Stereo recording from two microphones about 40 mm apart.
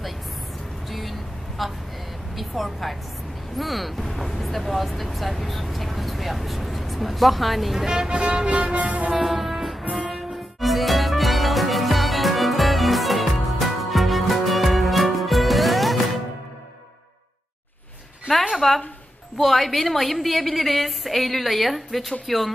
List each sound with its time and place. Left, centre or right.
0.8 s vehicle: centre
1.6 s speech: centre
7.8 s speech: centre
8.1 s music: right
9.1 s music: centre
18.5 s a sound: centre
19.3 s speech: centre